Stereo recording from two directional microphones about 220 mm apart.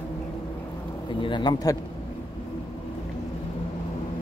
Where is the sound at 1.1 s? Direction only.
20° left (ahead or behind).